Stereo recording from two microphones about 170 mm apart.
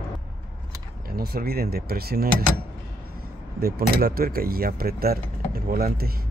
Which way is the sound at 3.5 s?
60° right (ahead or behind).